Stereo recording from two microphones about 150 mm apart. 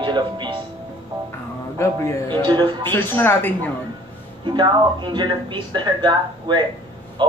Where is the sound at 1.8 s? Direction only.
20° left (ahead or behind).